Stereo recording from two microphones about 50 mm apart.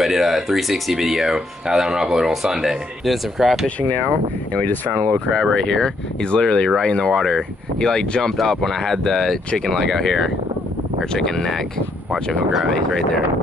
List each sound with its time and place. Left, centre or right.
0.0 s speech: centre
3.6 s speech: left
5.3 s speech: centre